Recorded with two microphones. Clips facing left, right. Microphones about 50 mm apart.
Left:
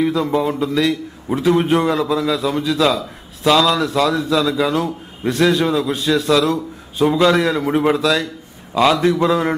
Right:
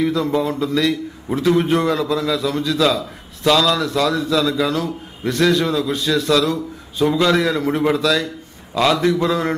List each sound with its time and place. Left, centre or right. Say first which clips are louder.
0.0 s a man's voice: left 1 dB; centre